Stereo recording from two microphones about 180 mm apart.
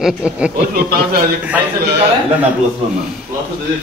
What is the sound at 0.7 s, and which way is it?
Speech, 55° right (ahead or behind).